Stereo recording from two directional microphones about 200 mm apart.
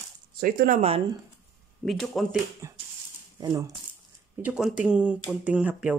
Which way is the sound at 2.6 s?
15° right (ahead or behind).